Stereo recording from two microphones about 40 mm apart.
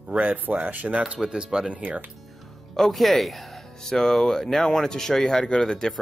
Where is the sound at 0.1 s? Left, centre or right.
Right.